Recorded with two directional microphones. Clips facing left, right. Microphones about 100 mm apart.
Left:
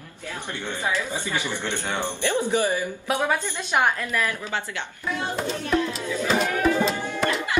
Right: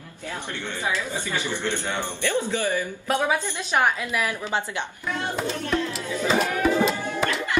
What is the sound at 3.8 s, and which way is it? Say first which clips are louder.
A woman's voice: even; 10° right (ahead or behind).